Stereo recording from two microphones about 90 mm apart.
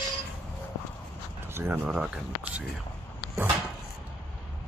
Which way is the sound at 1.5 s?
20° right (ahead or behind).